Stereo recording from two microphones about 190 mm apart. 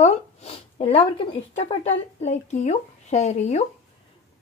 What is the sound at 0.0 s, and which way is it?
Speech, 35° left (ahead or behind).